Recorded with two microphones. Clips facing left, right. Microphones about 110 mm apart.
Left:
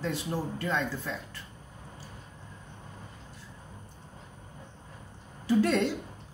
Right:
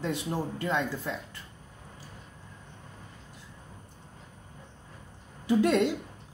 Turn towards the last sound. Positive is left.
turn(degrees=-15)  # may be behind; listen again after turning